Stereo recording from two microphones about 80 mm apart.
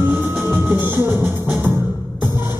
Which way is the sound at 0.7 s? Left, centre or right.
Right.